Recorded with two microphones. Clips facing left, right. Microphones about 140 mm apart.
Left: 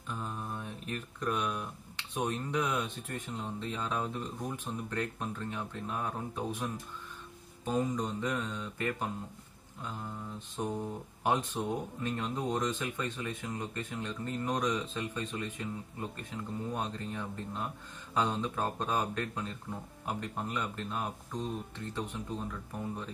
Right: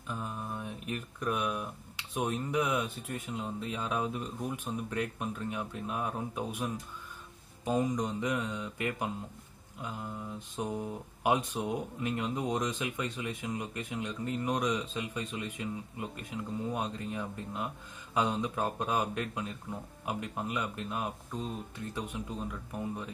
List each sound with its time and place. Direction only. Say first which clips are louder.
0.1 s speech: right 1 dB; 10° right (ahead or behind)
10.6 s speech: even; 10° right (ahead or behind)